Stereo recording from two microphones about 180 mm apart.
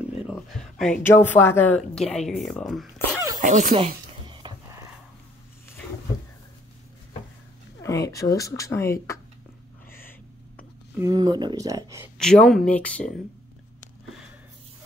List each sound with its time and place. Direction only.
0.3 s a sound: centre (ahead or behind)
1.0 s speech: 10° left (ahead or behind)
3.3 s speech: 45° right (ahead or behind)
3.7 s a sound: 30° right (ahead or behind)
7.8 s speech: 20° left (ahead or behind)
11.0 s speech: 20° right (ahead or behind)
12.2 s speech: 5° left (ahead or behind)